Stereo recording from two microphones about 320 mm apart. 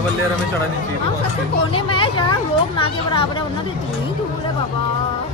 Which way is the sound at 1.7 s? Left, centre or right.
Centre.